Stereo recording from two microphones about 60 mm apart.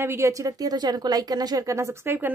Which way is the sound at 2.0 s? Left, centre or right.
Right.